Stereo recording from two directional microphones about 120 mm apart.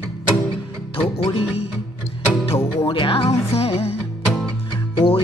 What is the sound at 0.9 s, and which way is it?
Music, 50° left (ahead or behind).